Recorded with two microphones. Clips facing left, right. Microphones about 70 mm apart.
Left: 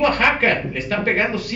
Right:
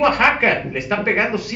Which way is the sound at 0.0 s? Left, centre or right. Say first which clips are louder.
Right 2 dB; right.